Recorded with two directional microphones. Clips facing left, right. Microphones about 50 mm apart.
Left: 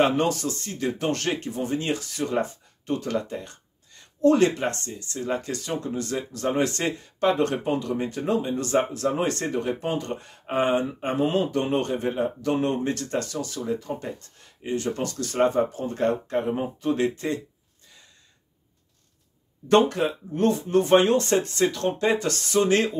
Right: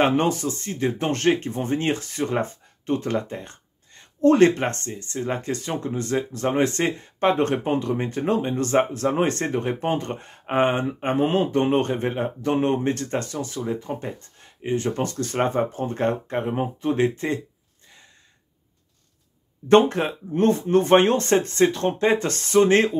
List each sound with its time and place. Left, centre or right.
0.0 s speech: right
19.7 s speech: right